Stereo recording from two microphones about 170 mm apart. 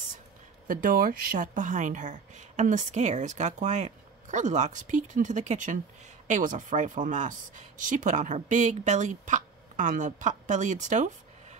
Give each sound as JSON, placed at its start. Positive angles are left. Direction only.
{"t": 0.7, "sound": "speech", "side_deg": -55}